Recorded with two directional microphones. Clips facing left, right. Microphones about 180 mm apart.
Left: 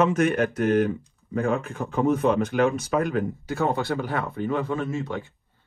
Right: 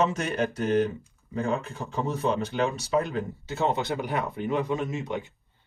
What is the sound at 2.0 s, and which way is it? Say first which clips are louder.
Speech: left 6 dB; 30° right (ahead or behind).